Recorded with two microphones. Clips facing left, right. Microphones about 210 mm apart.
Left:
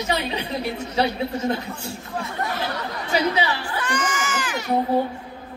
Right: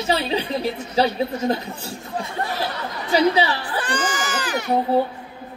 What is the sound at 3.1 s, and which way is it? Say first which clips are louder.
Speech: right 4 dB; 35° right (ahead or behind).